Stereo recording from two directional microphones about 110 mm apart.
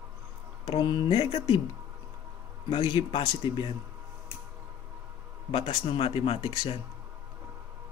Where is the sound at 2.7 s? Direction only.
45° left (ahead or behind).